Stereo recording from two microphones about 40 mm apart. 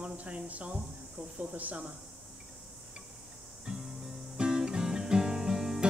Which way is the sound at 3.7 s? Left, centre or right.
Centre.